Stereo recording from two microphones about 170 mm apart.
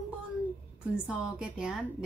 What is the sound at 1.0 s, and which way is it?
Speech, 5° right (ahead or behind).